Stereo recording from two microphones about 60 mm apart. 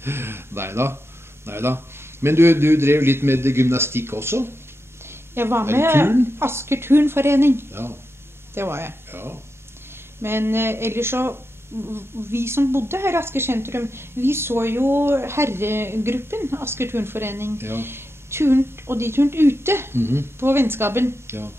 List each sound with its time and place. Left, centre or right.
0.0 s speech: right